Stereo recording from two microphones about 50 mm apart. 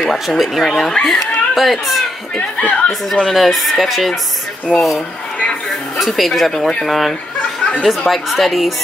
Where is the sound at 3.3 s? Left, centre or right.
Centre.